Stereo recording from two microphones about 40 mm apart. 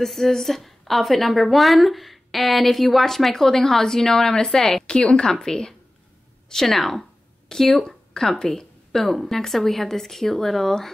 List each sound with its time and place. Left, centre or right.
0.0 s a woman's voice: centre
4.8 s a woman's voice: left